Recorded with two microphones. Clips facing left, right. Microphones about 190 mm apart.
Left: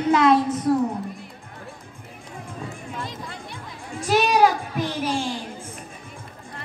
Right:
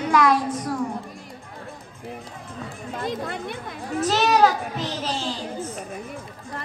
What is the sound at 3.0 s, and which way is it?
Music, 60° right (ahead or behind).